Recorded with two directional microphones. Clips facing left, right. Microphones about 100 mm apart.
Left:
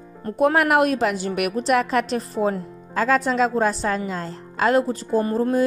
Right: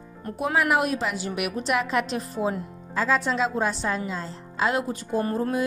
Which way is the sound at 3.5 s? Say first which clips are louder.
Left 5 dB; 40° left (ahead or behind).